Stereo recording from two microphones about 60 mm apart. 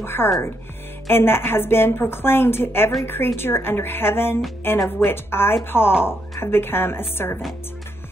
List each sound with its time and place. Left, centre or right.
0.0 s a woman's voice: left